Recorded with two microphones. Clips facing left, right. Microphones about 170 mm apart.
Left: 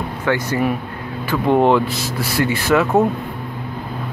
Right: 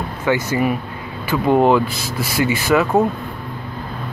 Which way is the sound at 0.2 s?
5° right (ahead or behind).